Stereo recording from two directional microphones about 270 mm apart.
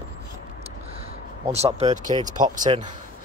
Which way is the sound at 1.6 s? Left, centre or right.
Right.